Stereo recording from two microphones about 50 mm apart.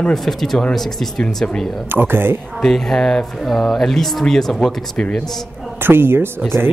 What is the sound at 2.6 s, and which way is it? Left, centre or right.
Speech, centre.